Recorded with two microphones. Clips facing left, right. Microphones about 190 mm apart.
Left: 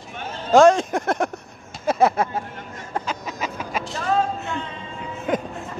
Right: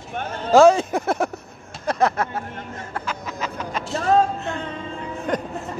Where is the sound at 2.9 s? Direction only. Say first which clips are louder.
Left 3 dB; 15° left (ahead or behind).